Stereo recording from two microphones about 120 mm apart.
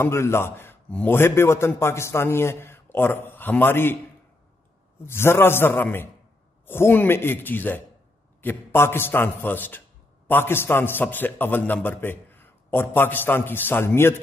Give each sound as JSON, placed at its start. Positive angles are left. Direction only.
{"t": 0.0, "sound": "a man's voice", "side_deg": 20}
{"t": 5.0, "sound": "a man's voice", "side_deg": 20}